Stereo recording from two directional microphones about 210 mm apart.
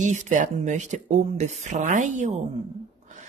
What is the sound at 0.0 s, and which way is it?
Speech, 35° right (ahead or behind).